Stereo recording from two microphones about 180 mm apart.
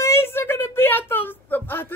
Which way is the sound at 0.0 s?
15° left (ahead or behind).